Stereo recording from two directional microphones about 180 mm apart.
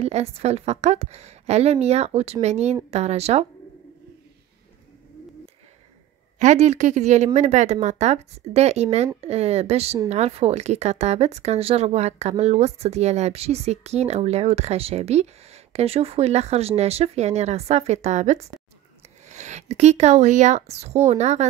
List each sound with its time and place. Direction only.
0.0 s speech: 35° right (ahead or behind)
6.4 s speech: 40° right (ahead or behind)